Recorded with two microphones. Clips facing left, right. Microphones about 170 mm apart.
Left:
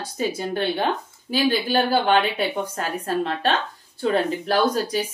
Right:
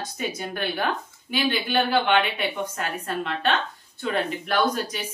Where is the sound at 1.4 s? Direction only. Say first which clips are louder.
Left 3 dB; 35° left (ahead or behind).